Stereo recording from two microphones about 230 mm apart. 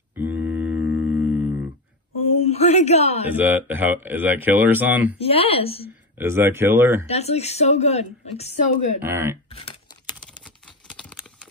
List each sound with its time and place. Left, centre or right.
0.1 s mantra: centre
2.4 s a man's voice: left
3.3 s speech: centre
5.2 s speech: left
6.1 s speech: centre
7.1 s speech: left
9.0 s speech: centre
9.5 s speech: left